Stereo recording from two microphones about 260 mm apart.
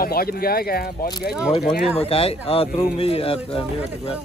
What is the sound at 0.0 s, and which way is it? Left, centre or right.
Speech, left.